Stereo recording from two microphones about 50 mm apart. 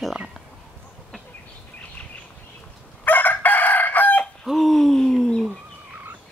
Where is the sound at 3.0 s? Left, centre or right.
Left.